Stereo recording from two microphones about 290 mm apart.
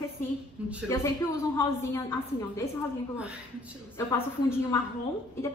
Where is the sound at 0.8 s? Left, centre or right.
Centre.